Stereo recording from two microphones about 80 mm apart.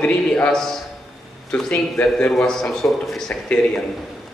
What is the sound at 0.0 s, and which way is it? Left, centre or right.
Speech, centre.